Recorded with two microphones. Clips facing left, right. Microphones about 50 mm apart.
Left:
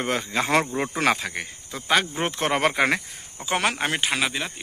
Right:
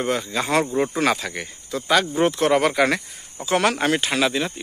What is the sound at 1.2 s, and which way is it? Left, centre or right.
Speech, centre.